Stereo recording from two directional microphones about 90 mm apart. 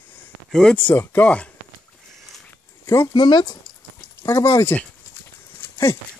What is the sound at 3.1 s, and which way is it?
Speech, 60° left (ahead or behind).